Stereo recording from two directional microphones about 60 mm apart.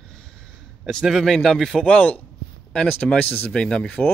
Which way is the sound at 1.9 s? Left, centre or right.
Left.